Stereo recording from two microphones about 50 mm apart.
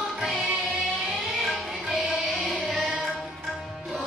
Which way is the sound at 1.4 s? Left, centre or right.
Centre.